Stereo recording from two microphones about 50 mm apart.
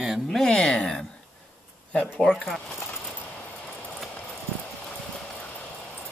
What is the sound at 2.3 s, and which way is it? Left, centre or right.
Speech, centre.